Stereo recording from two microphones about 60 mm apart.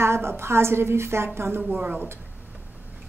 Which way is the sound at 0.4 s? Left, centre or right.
Right.